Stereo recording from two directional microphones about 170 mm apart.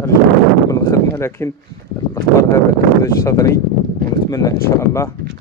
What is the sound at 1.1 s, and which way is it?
Speech, 15° left (ahead or behind).